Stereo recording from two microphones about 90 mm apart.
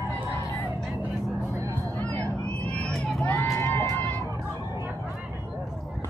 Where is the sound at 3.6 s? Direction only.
25° left (ahead or behind).